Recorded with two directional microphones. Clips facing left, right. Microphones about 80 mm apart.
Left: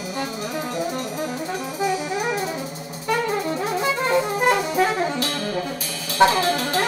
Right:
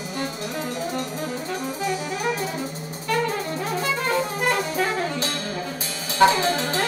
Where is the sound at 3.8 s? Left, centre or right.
Left.